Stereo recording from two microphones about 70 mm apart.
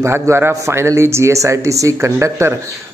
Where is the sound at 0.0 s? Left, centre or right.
Right.